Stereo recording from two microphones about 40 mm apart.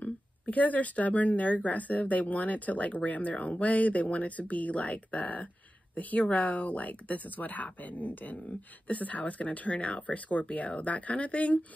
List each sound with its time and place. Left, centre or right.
0.0 s speech: left